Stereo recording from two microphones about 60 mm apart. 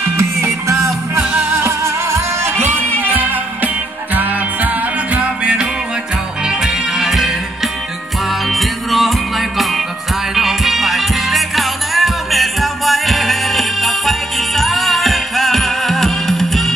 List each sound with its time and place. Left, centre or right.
0.2 s music: right
3.0 s music: right; by 16.7 s centre